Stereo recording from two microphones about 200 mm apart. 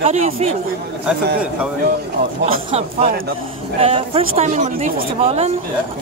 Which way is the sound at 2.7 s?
30° right (ahead or behind).